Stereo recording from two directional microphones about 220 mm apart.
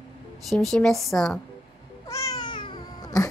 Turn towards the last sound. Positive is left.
turn(degrees=20)  # may be behind; listen again after turning